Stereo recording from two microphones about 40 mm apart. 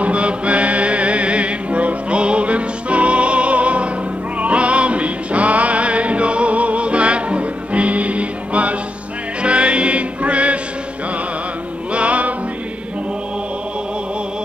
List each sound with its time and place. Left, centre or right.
0.0 s music: right
11.9 s music: right